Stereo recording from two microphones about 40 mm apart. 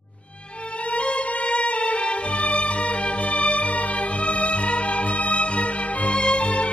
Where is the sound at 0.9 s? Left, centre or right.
Left.